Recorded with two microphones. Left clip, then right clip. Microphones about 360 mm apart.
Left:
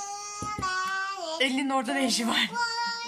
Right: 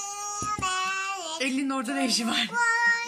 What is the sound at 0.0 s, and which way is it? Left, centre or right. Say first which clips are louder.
Child singing: right 3 dB; centre.